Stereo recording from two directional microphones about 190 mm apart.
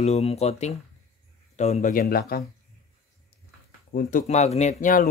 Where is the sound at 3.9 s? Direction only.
40° left (ahead or behind).